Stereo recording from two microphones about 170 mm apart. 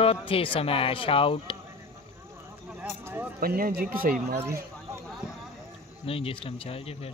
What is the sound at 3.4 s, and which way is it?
Speech, 60° right (ahead or behind).